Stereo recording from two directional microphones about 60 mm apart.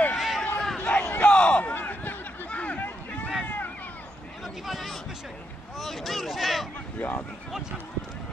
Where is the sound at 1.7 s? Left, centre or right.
Left.